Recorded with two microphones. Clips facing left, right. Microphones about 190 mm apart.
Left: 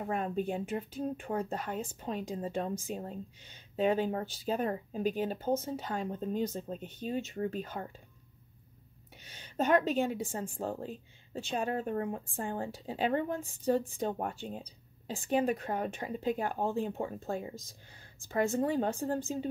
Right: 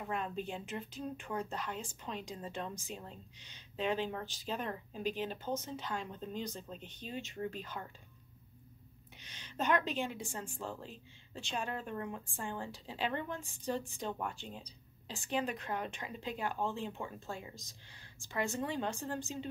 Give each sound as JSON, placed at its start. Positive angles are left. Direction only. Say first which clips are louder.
{"t": 0.0, "sound": "speech", "louder": "left 6 dB", "side_deg": 45}
{"t": 9.7, "sound": "speech", "louder": "left 6 dB", "side_deg": 45}
{"t": 18.6, "sound": "speech", "louder": "left 7 dB", "side_deg": 40}